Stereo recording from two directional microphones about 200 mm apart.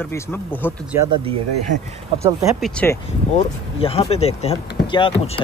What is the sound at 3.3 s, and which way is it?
Speech, 30° left (ahead or behind).